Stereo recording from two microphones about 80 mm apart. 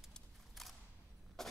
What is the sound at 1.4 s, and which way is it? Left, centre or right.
Rodents, centre.